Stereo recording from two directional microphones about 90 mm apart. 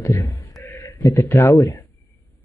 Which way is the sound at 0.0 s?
35° left (ahead or behind).